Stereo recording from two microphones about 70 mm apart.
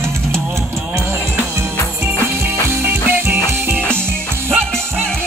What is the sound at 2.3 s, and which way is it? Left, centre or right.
Music, right.